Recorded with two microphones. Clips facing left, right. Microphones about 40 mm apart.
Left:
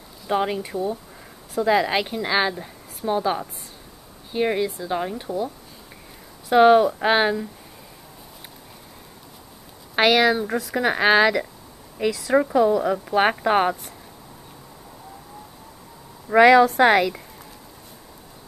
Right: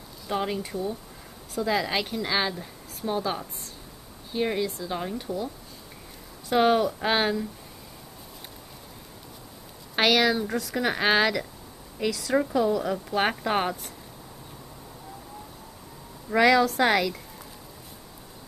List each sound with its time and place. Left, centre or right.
0.3 s a woman's voice: centre
6.5 s a woman's voice: centre
9.9 s a woman's voice: centre
16.3 s a woman's voice: left